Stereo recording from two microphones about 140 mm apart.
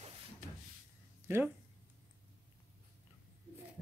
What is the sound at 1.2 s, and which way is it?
Speech, 15° right (ahead or behind).